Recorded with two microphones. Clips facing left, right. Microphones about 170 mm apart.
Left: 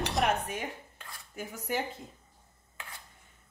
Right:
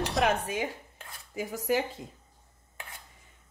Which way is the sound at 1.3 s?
90° right.